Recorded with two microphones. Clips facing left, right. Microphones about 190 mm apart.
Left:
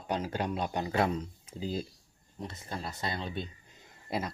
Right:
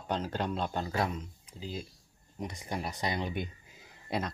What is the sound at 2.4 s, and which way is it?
Speech, 15° right (ahead or behind).